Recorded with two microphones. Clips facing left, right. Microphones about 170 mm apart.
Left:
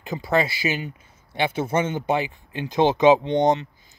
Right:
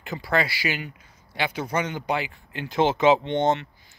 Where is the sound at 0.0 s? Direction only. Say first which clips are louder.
Left 3 dB; 20° left (ahead or behind).